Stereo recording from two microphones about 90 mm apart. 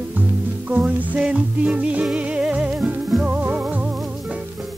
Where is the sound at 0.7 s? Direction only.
15° right (ahead or behind).